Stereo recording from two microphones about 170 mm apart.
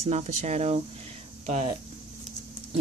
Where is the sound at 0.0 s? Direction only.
40° right (ahead or behind).